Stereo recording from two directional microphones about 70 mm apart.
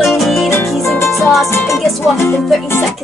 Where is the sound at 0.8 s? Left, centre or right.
Centre.